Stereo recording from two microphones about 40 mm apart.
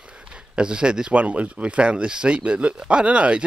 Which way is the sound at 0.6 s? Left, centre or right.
Right.